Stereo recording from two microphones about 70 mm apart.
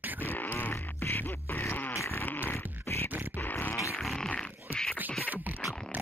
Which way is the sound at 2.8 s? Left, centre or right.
Left.